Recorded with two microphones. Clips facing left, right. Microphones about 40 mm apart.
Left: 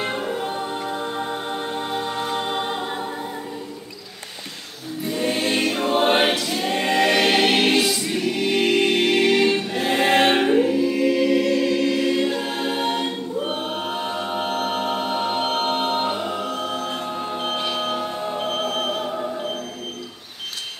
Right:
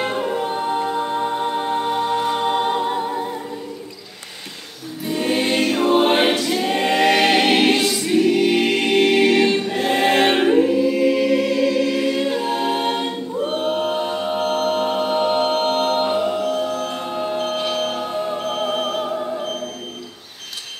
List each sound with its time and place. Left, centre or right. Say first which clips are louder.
0.0 s music: right 3 dB; centre
5.0 s music: right 3 dB; centre
5.5 s choir: right 5 dB; centre
9.2 s choir: right 2 dB; right
9.7 s choir: right 2 dB; centre
13.5 s a capella: right 5 dB; centre
14.4 s music: right 5 dB; centre
14.8 s music: right 4 dB; centre
16.5 s music: right 4 dB; centre
17.2 s music: right 5 dB; centre